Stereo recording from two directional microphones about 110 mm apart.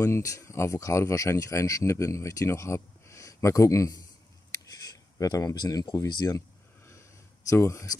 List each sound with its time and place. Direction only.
0.0 s speech: 30° left (ahead or behind)
4.6 s a sound: 30° left (ahead or behind)
5.9 s speech: 35° left (ahead or behind)
7.4 s speech: 25° left (ahead or behind)